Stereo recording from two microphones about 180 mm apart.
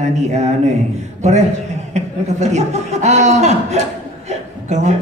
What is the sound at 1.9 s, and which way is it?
A woman's voice, 40° right (ahead or behind).